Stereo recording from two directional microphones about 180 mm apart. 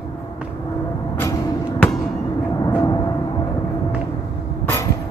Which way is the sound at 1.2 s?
10° left (ahead or behind).